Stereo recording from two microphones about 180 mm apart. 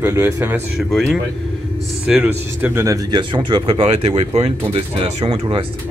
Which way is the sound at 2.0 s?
10° right (ahead or behind).